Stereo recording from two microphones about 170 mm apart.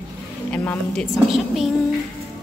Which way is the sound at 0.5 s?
10° left (ahead or behind).